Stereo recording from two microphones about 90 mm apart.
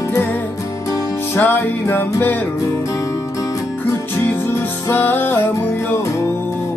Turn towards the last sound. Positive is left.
turn(degrees=25)  # may be behind; listen again after turning